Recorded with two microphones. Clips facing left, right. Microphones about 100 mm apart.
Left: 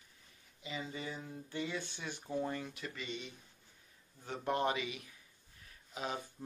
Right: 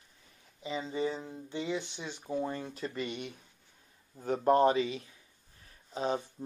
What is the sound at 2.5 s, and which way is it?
Speech, 30° right (ahead or behind).